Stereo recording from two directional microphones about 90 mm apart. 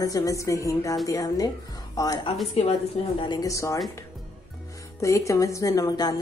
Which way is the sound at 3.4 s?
35° left (ahead or behind).